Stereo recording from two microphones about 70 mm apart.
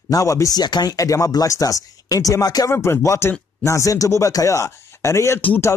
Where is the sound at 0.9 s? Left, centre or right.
Left.